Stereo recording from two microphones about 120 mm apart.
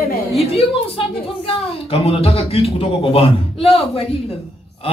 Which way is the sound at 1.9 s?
55° left (ahead or behind).